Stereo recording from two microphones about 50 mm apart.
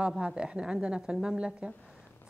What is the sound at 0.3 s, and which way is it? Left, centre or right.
A woman's voice, centre.